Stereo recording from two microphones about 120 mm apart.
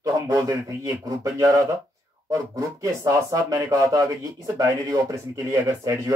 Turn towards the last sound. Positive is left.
turn(degrees=-25)  # may be behind; listen again after turning